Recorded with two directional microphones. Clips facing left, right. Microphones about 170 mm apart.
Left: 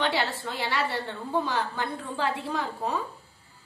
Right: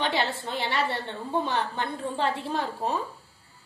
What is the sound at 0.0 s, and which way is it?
A woman's voice, 20° right (ahead or behind).